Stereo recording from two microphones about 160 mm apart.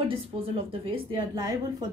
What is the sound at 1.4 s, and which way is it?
Speech, 20° right (ahead or behind).